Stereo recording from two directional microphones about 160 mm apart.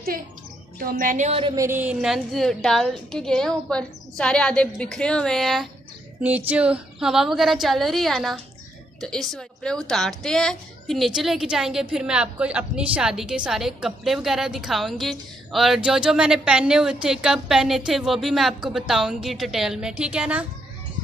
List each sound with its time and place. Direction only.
0.7 s speech: 60° right (ahead or behind)
1.4 s speech: 25° right (ahead or behind)
1.7 s a woman's voice: 10° right (ahead or behind)